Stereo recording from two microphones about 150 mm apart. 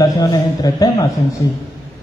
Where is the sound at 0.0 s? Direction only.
25° left (ahead or behind).